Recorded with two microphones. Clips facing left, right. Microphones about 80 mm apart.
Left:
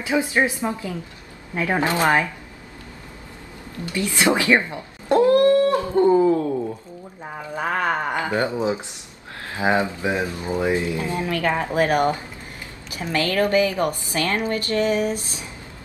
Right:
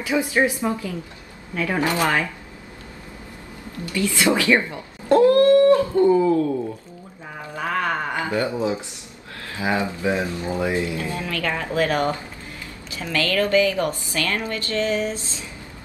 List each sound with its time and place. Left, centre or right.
0.0 s a woman's voice: left
3.8 s speech: left
7.5 s a woman's voice: left